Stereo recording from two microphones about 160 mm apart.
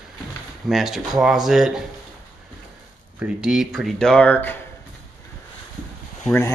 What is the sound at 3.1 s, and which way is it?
Speech, 5° right (ahead or behind).